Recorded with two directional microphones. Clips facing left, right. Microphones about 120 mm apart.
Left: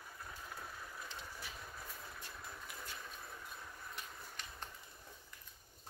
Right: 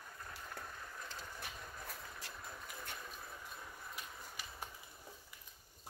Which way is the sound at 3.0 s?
Centre (ahead or behind).